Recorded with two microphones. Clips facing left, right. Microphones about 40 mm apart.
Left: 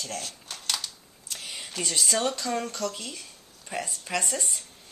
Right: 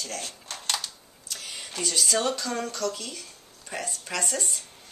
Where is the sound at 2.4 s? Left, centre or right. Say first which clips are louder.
Even; left.